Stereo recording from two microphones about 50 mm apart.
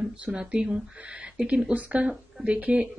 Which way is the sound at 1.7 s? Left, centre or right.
Right.